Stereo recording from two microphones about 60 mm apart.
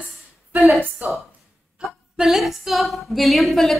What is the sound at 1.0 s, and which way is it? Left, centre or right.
Speech, right.